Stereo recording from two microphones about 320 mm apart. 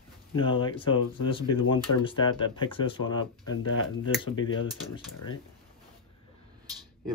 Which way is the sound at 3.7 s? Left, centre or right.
Left.